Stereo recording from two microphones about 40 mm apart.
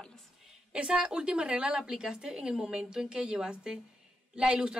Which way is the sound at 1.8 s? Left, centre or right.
Centre.